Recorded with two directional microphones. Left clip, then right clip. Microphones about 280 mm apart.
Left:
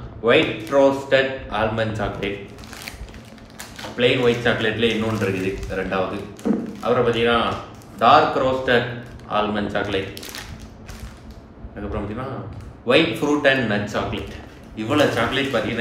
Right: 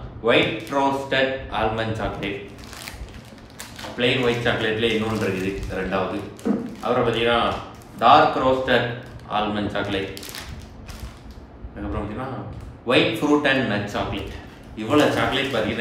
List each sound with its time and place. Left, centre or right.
0.2 s a man's voice: centre
3.7 s a man's voice: centre
6.4 s a sound: left
6.8 s a man's voice: centre
12.8 s a man's voice: centre